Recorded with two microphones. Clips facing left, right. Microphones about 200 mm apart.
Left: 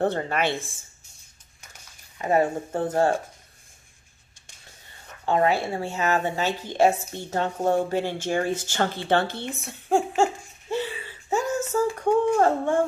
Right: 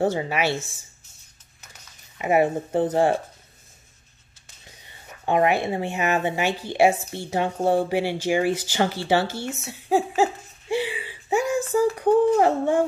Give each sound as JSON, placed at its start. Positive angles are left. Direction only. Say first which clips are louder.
{"t": 0.0, "sound": "a woman's voice", "louder": "right 1 dB", "side_deg": -5}
{"t": 2.1, "sound": "speech", "louder": "right 2 dB", "side_deg": -10}
{"t": 4.6, "sound": "speech", "louder": "right 2 dB", "side_deg": -15}
{"t": 9.7, "sound": "laughter", "louder": "right 1 dB", "side_deg": -5}
{"t": 11.7, "sound": "a sound", "louder": "right 4 dB", "side_deg": -15}
{"t": 12.4, "sound": "speech", "louder": "right 2 dB", "side_deg": -15}